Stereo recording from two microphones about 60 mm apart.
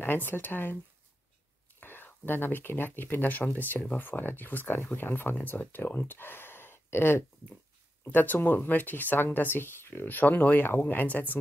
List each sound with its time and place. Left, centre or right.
0.0 s speech: left
1.8 s speech: left